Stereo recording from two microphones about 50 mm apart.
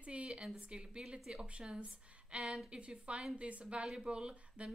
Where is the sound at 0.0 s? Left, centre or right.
Right.